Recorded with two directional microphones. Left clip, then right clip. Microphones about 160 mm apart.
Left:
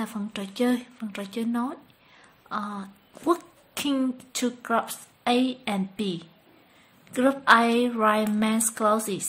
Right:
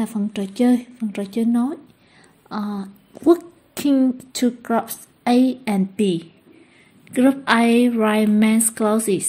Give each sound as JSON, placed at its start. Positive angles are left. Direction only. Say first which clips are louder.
{"t": 0.0, "sound": "a woman's voice", "louder": "right 7 dB", "side_deg": -10}
{"t": 3.3, "sound": "a sound", "louder": "right 9 dB", "side_deg": -10}
{"t": 4.3, "sound": "a woman's voice", "louder": "right 5 dB", "side_deg": -15}